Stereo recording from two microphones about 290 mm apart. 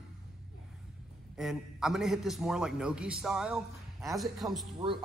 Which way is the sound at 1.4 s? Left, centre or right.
Centre.